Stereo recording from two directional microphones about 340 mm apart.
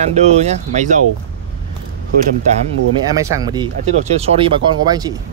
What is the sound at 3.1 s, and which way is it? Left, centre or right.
Speech, centre.